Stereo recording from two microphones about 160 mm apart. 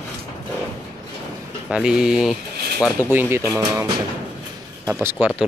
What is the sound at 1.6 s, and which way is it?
Speech, 5° right (ahead or behind).